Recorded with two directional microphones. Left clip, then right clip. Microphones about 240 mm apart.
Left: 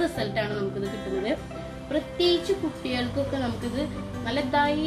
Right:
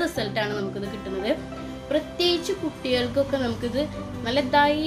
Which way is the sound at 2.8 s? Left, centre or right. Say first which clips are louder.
Right 8 dB; right.